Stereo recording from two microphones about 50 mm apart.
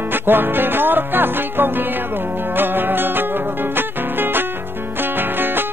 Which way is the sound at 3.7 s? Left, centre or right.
Right.